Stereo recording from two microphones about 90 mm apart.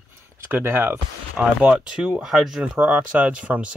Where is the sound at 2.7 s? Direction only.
15° right (ahead or behind).